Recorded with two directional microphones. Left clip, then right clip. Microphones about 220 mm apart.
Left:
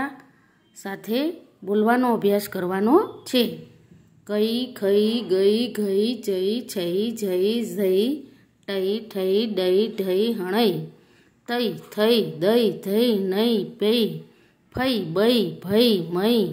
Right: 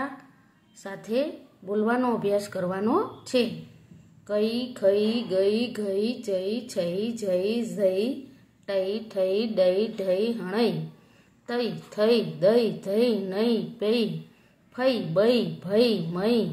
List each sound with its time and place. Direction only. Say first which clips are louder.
0.8 s a woman's voice: left 2 dB; 40° left (ahead or behind)
4.3 s mantra: left 3 dB; 45° left (ahead or behind)
11.4 s a woman's voice: left 3 dB; 45° left (ahead or behind)
11.9 s mantra: left 2 dB; 45° left (ahead or behind)